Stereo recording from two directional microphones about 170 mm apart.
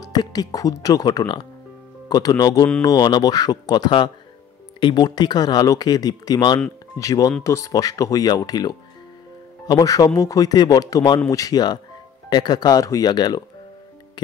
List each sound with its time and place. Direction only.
0.0 s speech: 25° left (ahead or behind)